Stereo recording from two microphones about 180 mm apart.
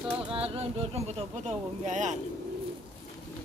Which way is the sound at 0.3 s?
35° right (ahead or behind).